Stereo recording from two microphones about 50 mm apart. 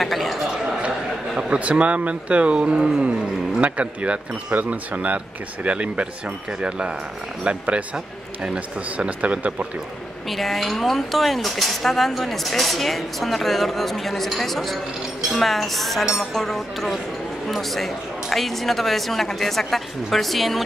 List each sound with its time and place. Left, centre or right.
0.0 s a man's voice: centre
1.5 s speech: right
10.3 s speech: centre